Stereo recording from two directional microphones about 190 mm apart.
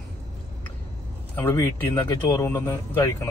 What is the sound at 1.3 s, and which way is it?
Speech, 15° left (ahead or behind).